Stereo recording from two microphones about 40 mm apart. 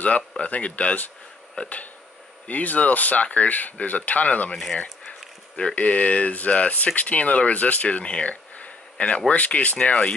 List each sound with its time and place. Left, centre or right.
0.4 s speech: left
5.8 s speech: left